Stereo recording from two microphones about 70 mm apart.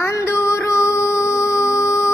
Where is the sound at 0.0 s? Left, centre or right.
Left.